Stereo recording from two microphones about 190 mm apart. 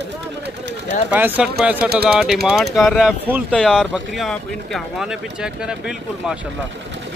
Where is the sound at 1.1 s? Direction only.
10° right (ahead or behind).